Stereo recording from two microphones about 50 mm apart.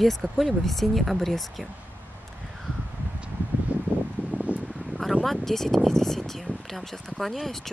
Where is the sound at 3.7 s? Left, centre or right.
Right.